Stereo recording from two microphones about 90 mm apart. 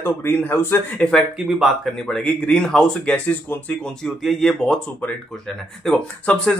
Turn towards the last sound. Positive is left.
turn(degrees=15)  # may be behind; listen again after turning